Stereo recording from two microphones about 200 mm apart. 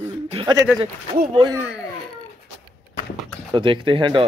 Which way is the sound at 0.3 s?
25° right (ahead or behind).